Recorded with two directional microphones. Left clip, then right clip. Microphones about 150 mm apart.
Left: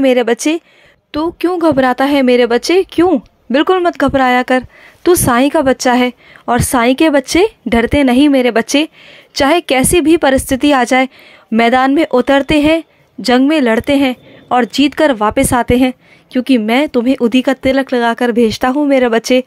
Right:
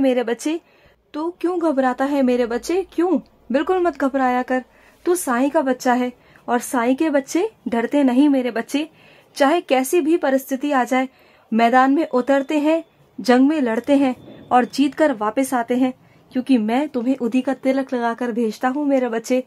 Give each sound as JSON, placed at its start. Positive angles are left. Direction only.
{"t": 0.0, "sound": "a woman's voice", "side_deg": 30}